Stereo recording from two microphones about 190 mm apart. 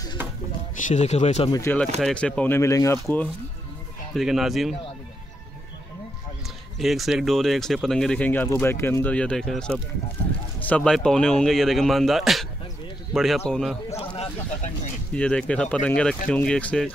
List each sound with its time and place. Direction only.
0.8 s speech: 35° left (ahead or behind)
1.5 s speech: 10° left (ahead or behind)
4.1 s speech: centre (ahead or behind)
6.8 s speech: centre (ahead or behind)
13.9 s a sound: 30° left (ahead or behind)
15.1 s speech: 5° left (ahead or behind)